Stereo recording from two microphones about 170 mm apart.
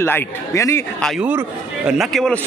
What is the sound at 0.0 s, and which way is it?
Speech, 15° left (ahead or behind).